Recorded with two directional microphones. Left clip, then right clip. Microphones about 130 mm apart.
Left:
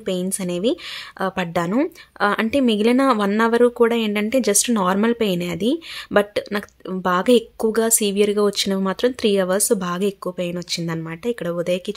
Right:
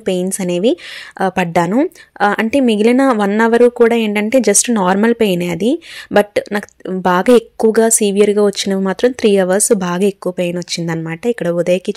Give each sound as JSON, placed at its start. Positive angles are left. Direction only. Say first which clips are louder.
{"t": 0.0, "sound": "speech", "louder": "right 7 dB", "side_deg": -40}